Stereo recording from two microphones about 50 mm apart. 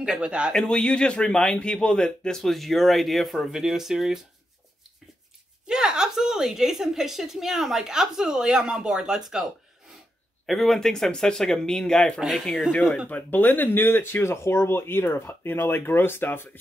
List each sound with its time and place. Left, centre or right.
0.2 s speech: right
0.5 s speech: centre
5.7 s a woman's voice: centre
10.4 s speech: centre
13.1 s speech: left
14.3 s speech: left